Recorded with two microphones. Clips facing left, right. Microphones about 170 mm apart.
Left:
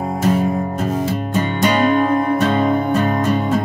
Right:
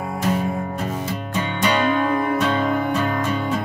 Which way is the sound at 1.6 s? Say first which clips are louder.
Left 4 dB; 40° left (ahead or behind).